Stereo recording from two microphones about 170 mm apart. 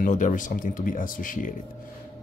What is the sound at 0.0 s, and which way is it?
Speech, 50° left (ahead or behind).